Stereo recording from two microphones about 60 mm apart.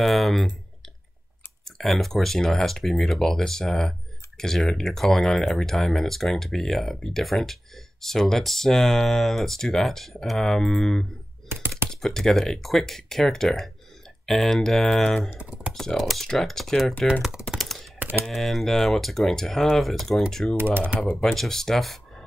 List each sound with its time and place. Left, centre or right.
0.0 s speech: centre
1.6 s speech: centre
11.4 s typing: right
11.9 s speech: centre
15.2 s speech: centre
15.7 s speech: centre
17.6 s typing: centre
17.9 s typing: right
18.2 s speech: centre
20.5 s speech: right
21.2 s speech: centre